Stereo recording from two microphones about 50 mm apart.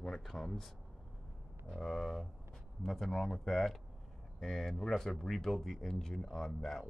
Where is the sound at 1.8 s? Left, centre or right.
Centre.